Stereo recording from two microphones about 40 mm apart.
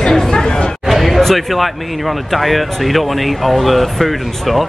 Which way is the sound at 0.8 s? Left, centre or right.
Centre.